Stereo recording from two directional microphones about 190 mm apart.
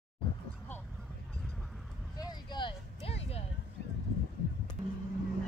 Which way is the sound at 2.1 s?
20° left (ahead or behind).